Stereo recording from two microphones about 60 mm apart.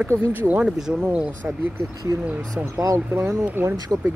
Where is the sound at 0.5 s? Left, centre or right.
Centre.